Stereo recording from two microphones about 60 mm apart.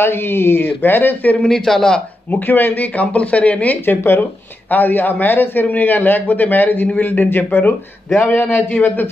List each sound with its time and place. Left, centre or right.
0.0 s a man's voice: left
1.4 s a man's voice: centre
2.3 s speech: left
3.8 s a man's voice: left
4.2 s a man's voice: left